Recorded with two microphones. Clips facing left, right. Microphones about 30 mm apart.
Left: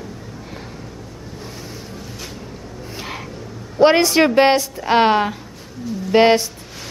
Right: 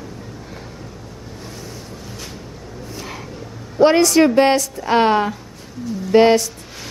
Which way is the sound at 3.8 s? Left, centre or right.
Centre.